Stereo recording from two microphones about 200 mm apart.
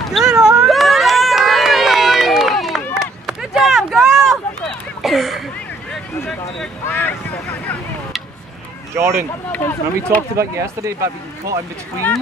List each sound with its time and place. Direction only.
0.0 s run: centre (ahead or behind)
6.9 s a sound: 10° left (ahead or behind)
8.9 s speech: 15° right (ahead or behind)
9.5 s speech: 10° left (ahead or behind)
10.3 s speech: 15° right (ahead or behind)